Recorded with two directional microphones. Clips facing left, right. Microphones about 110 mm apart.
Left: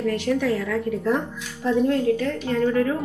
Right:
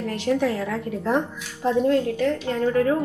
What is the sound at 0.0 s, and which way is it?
A woman's voice, 20° right (ahead or behind).